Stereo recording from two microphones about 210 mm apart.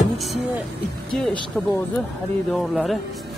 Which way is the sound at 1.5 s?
Centre (ahead or behind).